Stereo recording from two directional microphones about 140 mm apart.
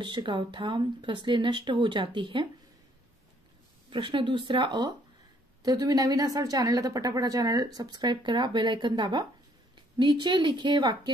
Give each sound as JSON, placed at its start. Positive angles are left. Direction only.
{"t": 0.0, "sound": "speech", "side_deg": -35}
{"t": 3.9, "sound": "a woman's voice", "side_deg": -35}